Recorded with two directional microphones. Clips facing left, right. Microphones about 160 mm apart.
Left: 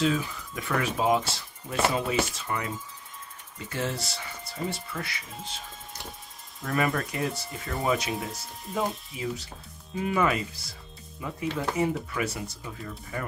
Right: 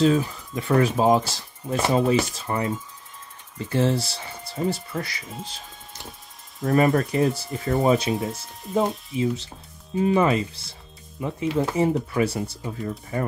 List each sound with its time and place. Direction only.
0.0 s speech: 35° right (ahead or behind)
6.6 s speech: 30° right (ahead or behind)